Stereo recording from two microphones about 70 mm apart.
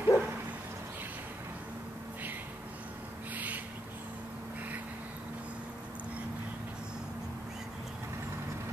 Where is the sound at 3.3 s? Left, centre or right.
Right.